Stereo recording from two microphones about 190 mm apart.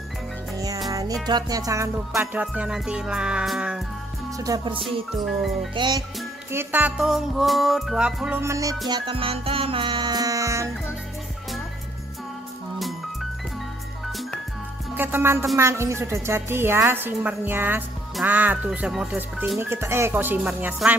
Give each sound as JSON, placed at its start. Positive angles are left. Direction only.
{"t": 0.9, "sound": "music", "side_deg": -20}
{"t": 4.4, "sound": "music", "side_deg": -20}
{"t": 5.2, "sound": "music", "side_deg": 0}
{"t": 5.8, "sound": "music", "side_deg": -20}
{"t": 6.5, "sound": "music", "side_deg": -10}
{"t": 12.7, "sound": "music", "side_deg": 0}
{"t": 15.0, "sound": "music", "side_deg": -10}